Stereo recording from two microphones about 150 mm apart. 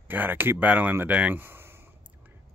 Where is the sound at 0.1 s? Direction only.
10° right (ahead or behind).